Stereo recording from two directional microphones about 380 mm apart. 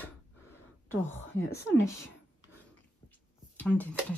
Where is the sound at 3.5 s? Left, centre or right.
Centre.